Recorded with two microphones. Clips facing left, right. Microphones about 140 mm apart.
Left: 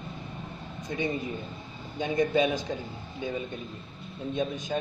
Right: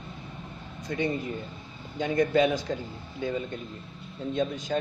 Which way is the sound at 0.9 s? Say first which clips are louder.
Right 2 dB; 20° left (ahead or behind).